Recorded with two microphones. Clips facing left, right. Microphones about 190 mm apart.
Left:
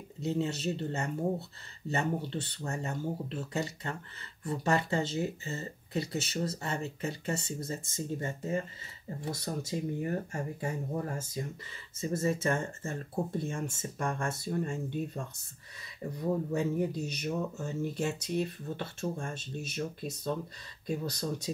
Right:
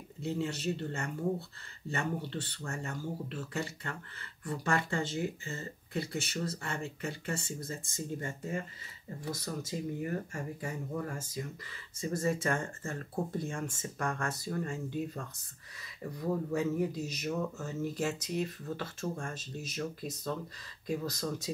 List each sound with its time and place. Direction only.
0.2 s speech: 20° left (ahead or behind)